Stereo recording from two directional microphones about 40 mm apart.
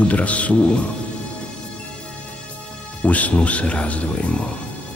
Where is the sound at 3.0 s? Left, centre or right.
Left.